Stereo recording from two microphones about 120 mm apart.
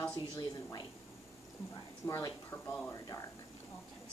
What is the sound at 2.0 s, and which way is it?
A woman's voice, 25° left (ahead or behind).